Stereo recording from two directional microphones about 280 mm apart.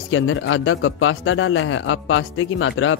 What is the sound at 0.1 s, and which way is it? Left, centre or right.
A man's voice, left.